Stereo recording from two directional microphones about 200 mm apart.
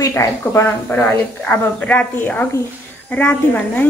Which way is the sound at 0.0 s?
15° left (ahead or behind).